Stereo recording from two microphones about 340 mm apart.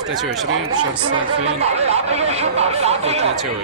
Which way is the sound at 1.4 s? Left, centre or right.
Centre.